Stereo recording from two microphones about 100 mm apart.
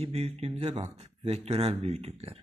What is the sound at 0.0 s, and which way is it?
Speech, 90° right.